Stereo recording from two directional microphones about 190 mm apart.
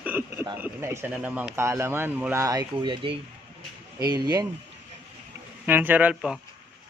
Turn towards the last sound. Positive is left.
turn(degrees=-5)  # may be behind; listen again after turning